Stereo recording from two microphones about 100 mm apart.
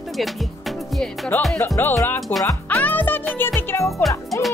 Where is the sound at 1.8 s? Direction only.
20° left (ahead or behind).